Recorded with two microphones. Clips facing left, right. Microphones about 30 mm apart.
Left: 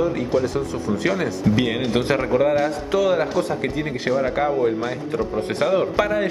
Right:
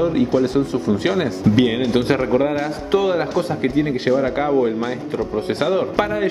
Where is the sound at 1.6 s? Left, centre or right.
Centre.